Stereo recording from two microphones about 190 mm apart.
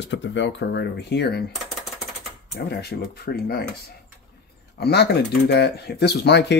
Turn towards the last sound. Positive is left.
turn(degrees=65)  # may be behind; listen again after turning